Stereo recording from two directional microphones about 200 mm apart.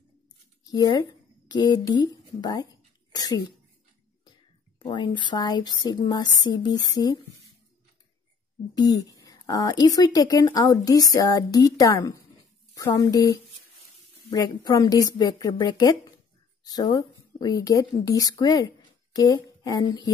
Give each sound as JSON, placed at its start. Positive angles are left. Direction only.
{"t": 0.7, "sound": "a sound", "side_deg": 20}
{"t": 4.7, "sound": "speech", "side_deg": 20}
{"t": 8.7, "sound": "speech", "side_deg": 20}